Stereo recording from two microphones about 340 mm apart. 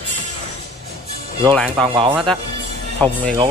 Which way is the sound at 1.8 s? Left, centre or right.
Centre.